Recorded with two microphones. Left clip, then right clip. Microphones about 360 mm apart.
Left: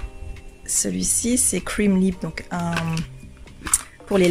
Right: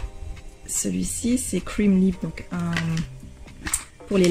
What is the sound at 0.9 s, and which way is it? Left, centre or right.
Speech, centre.